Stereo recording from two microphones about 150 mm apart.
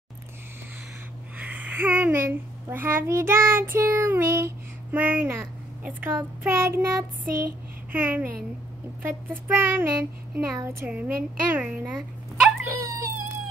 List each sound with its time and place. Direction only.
1.4 s a child's voice: 10° right (ahead or behind)
7.2 s speech: 70° right (ahead or behind)
7.9 s a child's voice: 15° right (ahead or behind)
12.6 s wail: 20° right (ahead or behind)